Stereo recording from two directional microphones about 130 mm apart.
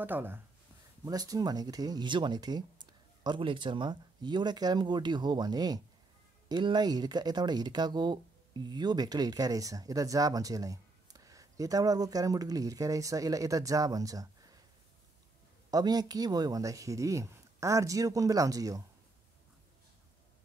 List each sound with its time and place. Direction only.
0.0 s speech: 15° right (ahead or behind)
1.0 s speech: 30° right (ahead or behind)
15.7 s speech: 30° right (ahead or behind)